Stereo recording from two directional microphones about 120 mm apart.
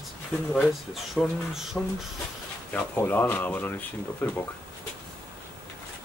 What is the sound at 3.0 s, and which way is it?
Speech, 15° left (ahead or behind).